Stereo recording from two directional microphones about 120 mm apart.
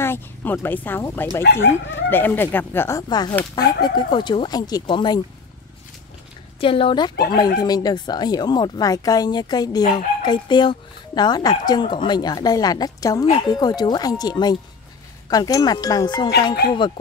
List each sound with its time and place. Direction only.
0.0 s speech: 20° left (ahead or behind)
3.0 s speech: 35° left (ahead or behind)
6.6 s speech: 50° left (ahead or behind)